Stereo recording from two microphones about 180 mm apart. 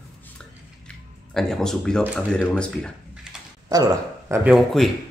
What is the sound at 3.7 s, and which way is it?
Speech, 20° right (ahead or behind).